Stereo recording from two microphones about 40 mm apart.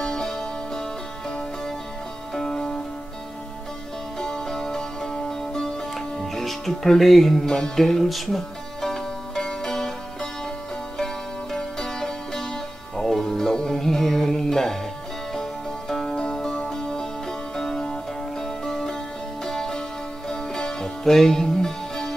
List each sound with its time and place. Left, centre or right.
0.0 s music: centre
2.3 s music: centre
4.2 s music: centre
7.4 s music: centre
11.5 s music: centre
15.9 s music: centre